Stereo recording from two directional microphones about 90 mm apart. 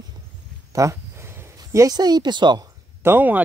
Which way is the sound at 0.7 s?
35° right (ahead or behind).